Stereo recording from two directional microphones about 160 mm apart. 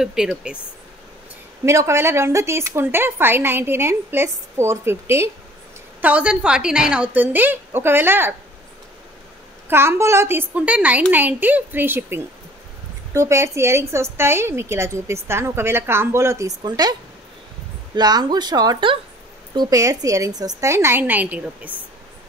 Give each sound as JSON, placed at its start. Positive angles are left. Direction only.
{"t": 0.0, "sound": "a woman's voice", "side_deg": -5}
{"t": 1.7, "sound": "a woman's voice", "side_deg": -20}
{"t": 9.7, "sound": "a woman's voice", "side_deg": -15}
{"t": 17.9, "sound": "a woman's voice", "side_deg": -25}